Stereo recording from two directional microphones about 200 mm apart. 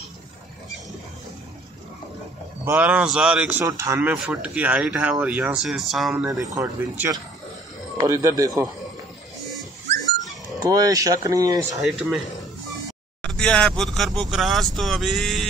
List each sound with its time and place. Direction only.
2.6 s speech: 10° right (ahead or behind)
6.3 s speech: 15° right (ahead or behind)
10.6 s speech: 20° right (ahead or behind)
13.3 s speech: 5° left (ahead or behind)